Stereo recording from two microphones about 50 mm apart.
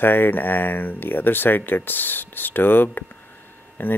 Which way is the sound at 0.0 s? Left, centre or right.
Left.